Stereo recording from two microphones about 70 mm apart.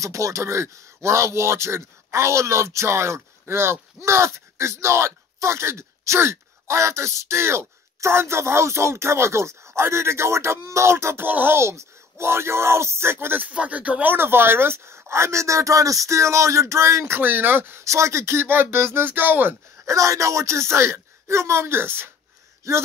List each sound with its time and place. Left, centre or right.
0.0 s speech: right
11.2 s speech: right
13.5 s speech: centre
14.1 s speech: right
17.2 s speech: right
17.8 s speech: right
19.9 s speech: right